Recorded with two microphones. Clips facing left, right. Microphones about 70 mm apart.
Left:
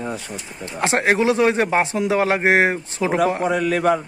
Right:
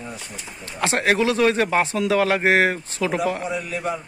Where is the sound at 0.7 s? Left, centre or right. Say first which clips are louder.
Left 2 dB; left.